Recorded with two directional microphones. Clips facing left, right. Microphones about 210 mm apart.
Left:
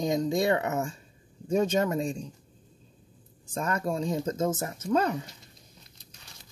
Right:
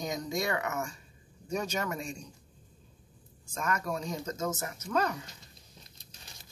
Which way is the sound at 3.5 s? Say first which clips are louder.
Left 4 dB; 30° left (ahead or behind).